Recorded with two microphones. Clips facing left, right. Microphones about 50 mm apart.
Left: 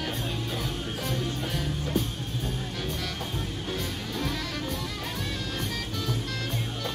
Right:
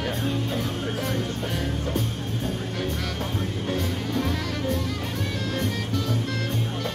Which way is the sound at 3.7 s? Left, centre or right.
Right.